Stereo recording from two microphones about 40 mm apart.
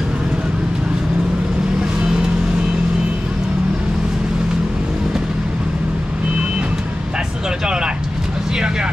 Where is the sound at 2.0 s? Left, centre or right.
Right.